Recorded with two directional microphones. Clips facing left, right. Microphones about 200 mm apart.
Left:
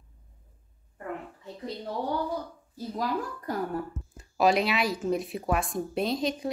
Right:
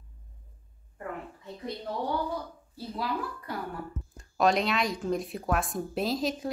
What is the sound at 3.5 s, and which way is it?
Speech, 45° left (ahead or behind).